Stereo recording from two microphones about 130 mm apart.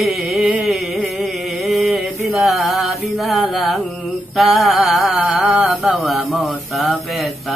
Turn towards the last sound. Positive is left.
turn(degrees=0)  # may be behind; listen again after turning